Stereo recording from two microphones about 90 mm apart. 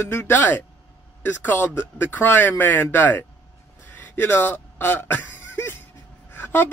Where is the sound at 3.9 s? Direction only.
20° left (ahead or behind).